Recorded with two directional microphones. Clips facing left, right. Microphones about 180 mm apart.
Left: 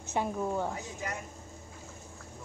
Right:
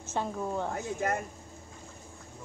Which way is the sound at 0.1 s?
10° left (ahead or behind).